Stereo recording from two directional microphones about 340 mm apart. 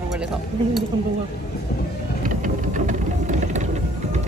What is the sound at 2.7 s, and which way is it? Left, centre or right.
Vehicle, right.